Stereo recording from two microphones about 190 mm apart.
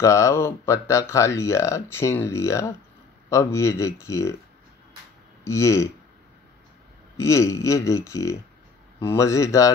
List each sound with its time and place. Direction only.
0.0 s speech: 15° left (ahead or behind)
5.4 s speech: 15° left (ahead or behind)
7.2 s speech: 15° left (ahead or behind)